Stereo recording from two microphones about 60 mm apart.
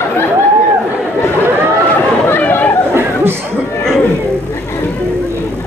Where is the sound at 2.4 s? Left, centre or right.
Left.